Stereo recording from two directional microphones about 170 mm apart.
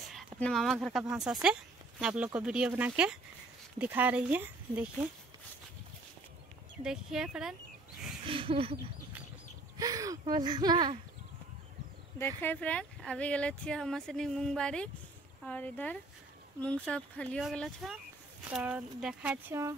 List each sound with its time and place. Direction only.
0.4 s speech: centre (ahead or behind)
6.8 s speech: 5° right (ahead or behind)
8.3 s a sound: 35° right (ahead or behind)
9.8 s speech: 20° right (ahead or behind)
12.4 s speech: 10° left (ahead or behind); by 19.7 s 15° right (ahead or behind)